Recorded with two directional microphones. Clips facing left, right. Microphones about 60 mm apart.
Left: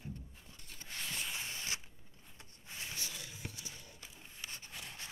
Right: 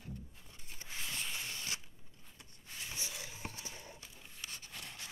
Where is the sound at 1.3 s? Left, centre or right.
Left.